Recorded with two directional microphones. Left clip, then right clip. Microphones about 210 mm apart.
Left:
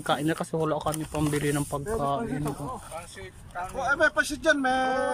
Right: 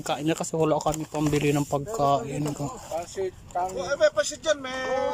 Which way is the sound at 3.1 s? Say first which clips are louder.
Right 9 dB; 25° right (ahead or behind).